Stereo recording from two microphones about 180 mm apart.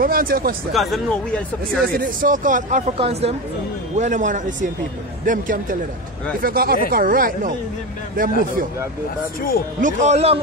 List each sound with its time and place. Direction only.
0.0 s speech: 55° right (ahead or behind)
0.7 s speech: 5° left (ahead or behind)
2.0 s speech: 50° right (ahead or behind)
3.0 s a man's voice: 35° right (ahead or behind); by 8.3 s 50° right (ahead or behind)
9.8 s a man's voice: 45° right (ahead or behind)